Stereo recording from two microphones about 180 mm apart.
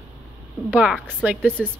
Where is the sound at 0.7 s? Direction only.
5° right (ahead or behind).